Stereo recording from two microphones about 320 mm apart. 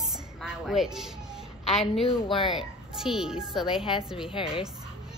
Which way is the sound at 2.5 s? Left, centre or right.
Centre.